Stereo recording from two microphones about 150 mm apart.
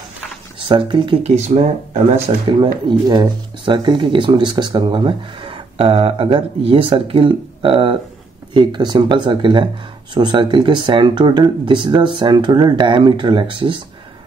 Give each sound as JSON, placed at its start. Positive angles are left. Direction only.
{"t": 0.6, "sound": "speech", "side_deg": -35}
{"t": 2.9, "sound": "speech", "side_deg": -30}